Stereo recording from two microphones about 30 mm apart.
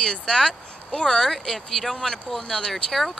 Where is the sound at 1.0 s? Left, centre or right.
Centre.